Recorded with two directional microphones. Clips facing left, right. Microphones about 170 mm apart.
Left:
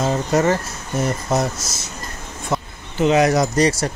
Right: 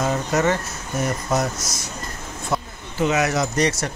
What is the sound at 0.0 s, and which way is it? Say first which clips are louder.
Speech: left 3 dB; 30° left (ahead or behind).